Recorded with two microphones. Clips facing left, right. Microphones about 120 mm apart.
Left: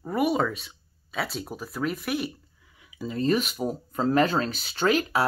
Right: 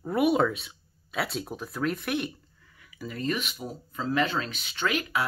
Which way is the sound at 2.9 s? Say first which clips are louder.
Left 6 dB; 25° left (ahead or behind).